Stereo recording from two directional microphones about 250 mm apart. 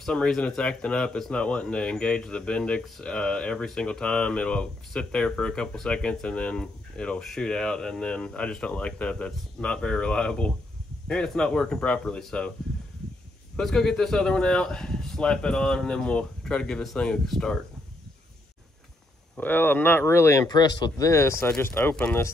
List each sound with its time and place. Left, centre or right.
0.0 s speech: centre
13.6 s speech: centre
19.3 s speech: centre